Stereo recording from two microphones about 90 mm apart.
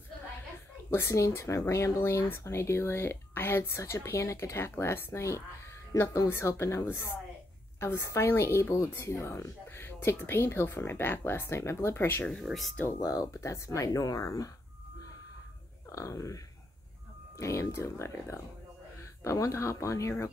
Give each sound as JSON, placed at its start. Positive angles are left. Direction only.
{"t": 0.8, "sound": "speech", "side_deg": 30}
{"t": 12.4, "sound": "speech", "side_deg": 0}
{"t": 13.0, "sound": "speech", "side_deg": 45}
{"t": 15.9, "sound": "speech", "side_deg": 35}
{"t": 17.4, "sound": "speech", "side_deg": 35}